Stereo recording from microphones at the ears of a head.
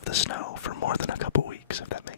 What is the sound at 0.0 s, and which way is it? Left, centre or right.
Whispering, left.